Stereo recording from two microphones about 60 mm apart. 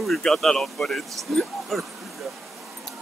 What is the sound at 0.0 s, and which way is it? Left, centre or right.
Speech, centre.